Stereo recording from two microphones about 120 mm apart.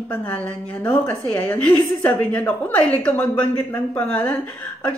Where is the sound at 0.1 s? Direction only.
15° left (ahead or behind).